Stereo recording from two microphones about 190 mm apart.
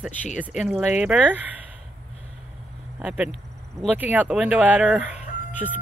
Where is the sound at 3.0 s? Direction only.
5° right (ahead or behind).